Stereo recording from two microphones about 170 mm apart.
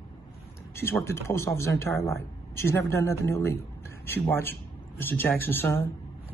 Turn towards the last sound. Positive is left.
turn(degrees=10)  # may be behind; listen again after turning